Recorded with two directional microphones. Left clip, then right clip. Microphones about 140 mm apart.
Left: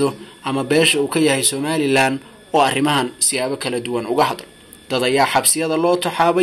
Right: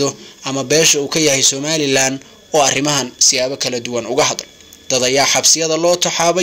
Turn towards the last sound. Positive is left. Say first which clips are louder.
# right 2 dB
turn(degrees=-45)  # may be behind; listen again after turning